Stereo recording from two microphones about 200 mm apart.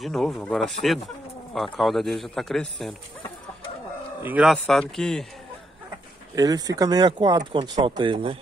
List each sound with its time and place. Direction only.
0.0 s speech: centre (ahead or behind)
4.2 s speech: 5° right (ahead or behind)
6.3 s speech: 20° right (ahead or behind)